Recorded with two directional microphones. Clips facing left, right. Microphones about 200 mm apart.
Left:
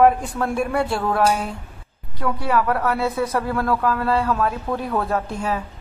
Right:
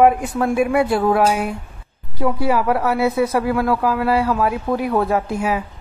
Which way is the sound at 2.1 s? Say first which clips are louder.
Right 3 dB; 25° right (ahead or behind).